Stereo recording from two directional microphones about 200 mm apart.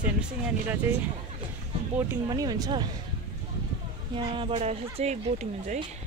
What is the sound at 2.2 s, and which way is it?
Speech, 20° right (ahead or behind).